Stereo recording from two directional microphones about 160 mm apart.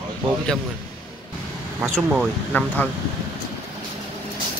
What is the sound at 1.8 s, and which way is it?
Speech, centre (ahead or behind).